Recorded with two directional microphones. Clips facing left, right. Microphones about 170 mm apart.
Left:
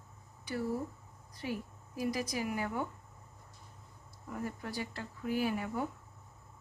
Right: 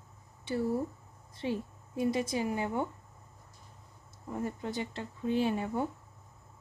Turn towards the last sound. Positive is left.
turn(degrees=-25)  # may be behind; listen again after turning